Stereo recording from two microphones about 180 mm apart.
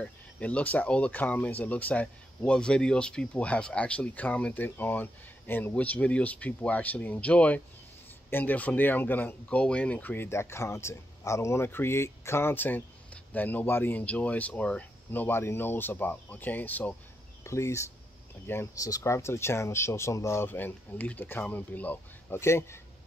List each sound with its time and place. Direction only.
0.0 s speech: 5° left (ahead or behind)